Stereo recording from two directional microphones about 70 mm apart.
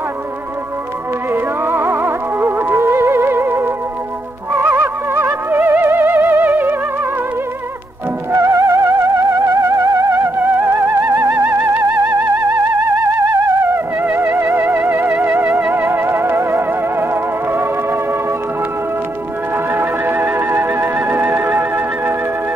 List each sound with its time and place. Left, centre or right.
1.3 s music: right
8.3 s music: right
14.1 s theremin: right
15.1 s music: right
19.5 s music: right